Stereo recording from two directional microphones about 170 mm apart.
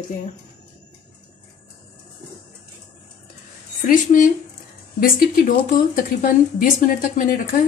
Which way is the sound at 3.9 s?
55° left (ahead or behind).